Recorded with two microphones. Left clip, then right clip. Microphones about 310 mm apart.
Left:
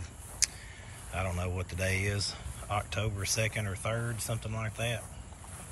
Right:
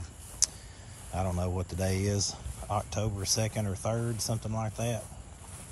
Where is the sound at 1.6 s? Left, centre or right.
Centre.